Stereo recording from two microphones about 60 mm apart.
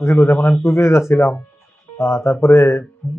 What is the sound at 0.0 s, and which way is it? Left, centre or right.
Speech, left.